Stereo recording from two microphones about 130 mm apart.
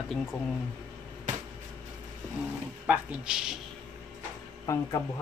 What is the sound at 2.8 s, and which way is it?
Speech, 5° right (ahead or behind).